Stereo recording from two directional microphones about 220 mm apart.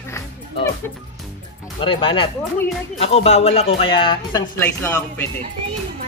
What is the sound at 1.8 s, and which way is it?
Speech, 25° left (ahead or behind).